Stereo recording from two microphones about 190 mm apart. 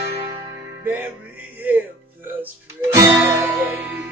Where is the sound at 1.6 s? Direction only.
10° right (ahead or behind).